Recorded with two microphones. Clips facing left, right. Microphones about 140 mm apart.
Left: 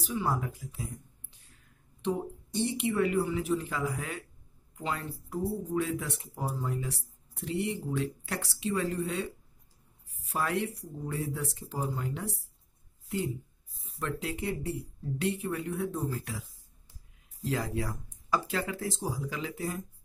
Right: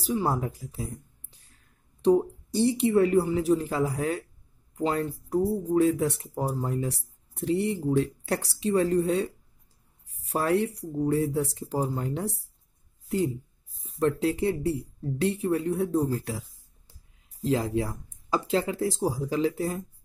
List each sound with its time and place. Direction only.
0.0 s speech: 35° right (ahead or behind)
2.0 s speech: 35° right (ahead or behind)
13.9 s speech: 35° right (ahead or behind)
17.4 s speech: 25° right (ahead or behind)